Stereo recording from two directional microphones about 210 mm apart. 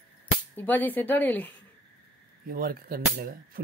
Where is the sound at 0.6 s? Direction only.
10° left (ahead or behind).